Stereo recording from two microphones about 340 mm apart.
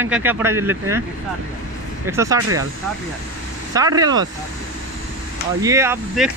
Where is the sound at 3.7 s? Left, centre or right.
Centre.